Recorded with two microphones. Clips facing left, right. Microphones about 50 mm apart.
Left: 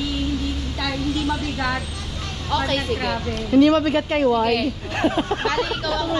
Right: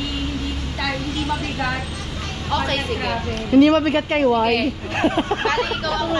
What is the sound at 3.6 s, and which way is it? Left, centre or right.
Speech, right.